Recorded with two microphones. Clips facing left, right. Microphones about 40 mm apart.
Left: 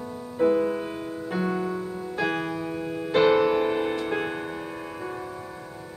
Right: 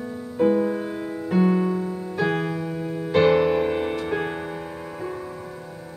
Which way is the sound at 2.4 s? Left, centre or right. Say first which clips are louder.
Right 2 dB; centre.